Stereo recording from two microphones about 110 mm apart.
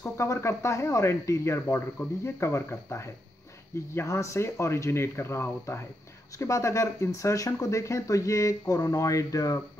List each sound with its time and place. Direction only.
0.2 s speech: 25° left (ahead or behind)